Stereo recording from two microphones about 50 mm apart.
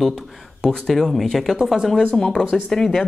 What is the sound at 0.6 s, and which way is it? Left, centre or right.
A woman's voice, centre.